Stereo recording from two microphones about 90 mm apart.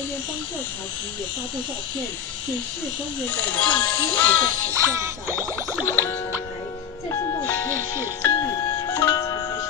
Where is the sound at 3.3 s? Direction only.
15° left (ahead or behind).